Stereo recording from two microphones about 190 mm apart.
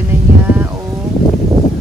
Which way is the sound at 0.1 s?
10° right (ahead or behind).